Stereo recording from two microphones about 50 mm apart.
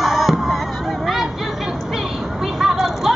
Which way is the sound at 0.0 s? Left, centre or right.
Centre.